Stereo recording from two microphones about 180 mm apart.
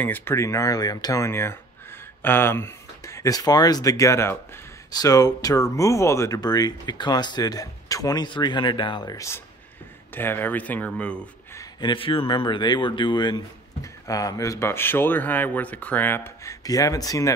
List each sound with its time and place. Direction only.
0.0 s speech: 10° left (ahead or behind)
11.8 s speech: 30° left (ahead or behind)